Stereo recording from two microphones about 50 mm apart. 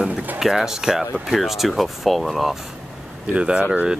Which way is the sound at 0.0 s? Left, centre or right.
Centre.